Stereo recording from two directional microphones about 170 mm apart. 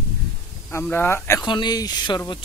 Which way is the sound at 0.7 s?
15° left (ahead or behind).